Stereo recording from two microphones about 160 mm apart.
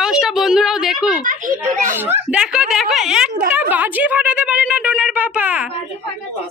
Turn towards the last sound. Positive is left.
turn(degrees=-10)  # may be behind; listen again after turning